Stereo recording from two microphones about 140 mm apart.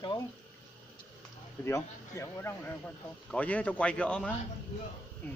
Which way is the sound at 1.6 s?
20° left (ahead or behind).